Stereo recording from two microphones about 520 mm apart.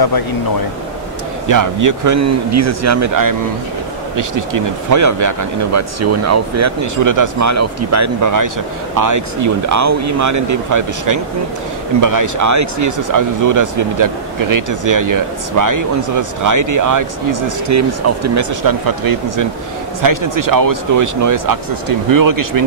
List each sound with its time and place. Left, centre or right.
1.5 s speech: right